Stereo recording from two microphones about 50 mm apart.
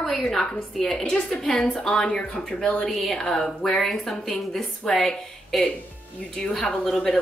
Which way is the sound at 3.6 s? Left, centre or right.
Centre.